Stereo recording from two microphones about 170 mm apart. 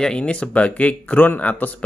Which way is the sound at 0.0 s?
5° left (ahead or behind).